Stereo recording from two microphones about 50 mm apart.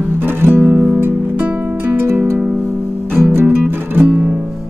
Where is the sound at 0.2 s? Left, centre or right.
Right.